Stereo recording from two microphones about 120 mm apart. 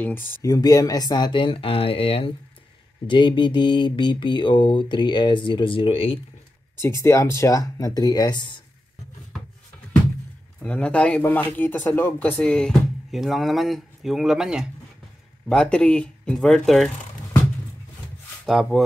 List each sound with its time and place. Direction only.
0.0 s speech: 15° left (ahead or behind)
0.4 s speech: 30° left (ahead or behind); by 2.3 s 50° left (ahead or behind)
3.1 s speech: 40° left (ahead or behind)
6.8 s speech: 25° left (ahead or behind)
10.6 s speech: 10° left (ahead or behind)
15.4 s speech: 5° left (ahead or behind)
18.4 s speech: centre (ahead or behind)